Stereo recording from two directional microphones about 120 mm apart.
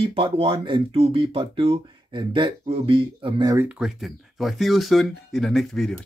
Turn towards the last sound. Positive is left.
turn(degrees=0)  # may be behind; listen again after turning